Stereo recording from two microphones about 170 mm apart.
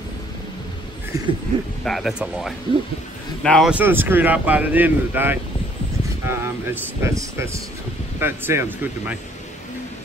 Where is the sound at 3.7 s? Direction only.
10° right (ahead or behind).